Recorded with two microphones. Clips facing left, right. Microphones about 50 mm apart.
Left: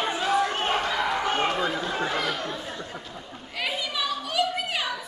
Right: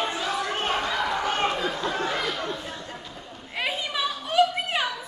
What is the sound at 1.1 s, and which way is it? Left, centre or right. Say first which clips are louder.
Chatter: even; centre.